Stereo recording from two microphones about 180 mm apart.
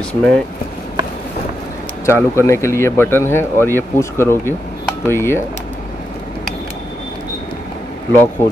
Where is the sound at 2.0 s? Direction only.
15° left (ahead or behind).